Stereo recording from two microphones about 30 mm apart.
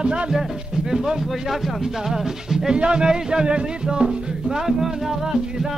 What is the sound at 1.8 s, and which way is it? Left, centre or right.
Music, centre.